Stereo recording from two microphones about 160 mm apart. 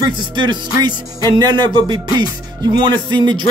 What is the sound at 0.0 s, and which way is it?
Speech, 30° right (ahead or behind).